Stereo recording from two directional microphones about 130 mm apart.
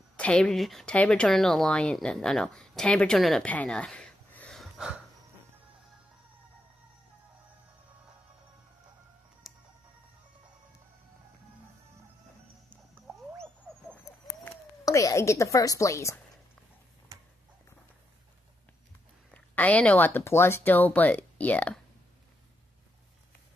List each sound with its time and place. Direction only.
0.2 s speech: 5° left (ahead or behind)
4.6 s a sound: 5° right (ahead or behind)
9.5 s music: centre (ahead or behind)
14.9 s a woman's voice: 25° left (ahead or behind)
19.3 s speech: 10° left (ahead or behind)